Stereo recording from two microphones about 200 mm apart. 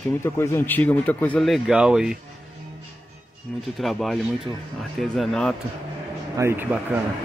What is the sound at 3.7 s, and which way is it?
Speech, centre (ahead or behind).